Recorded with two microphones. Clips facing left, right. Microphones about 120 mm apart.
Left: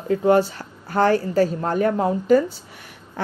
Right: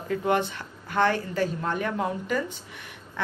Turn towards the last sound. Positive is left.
turn(degrees=40)  # may be behind; listen again after turning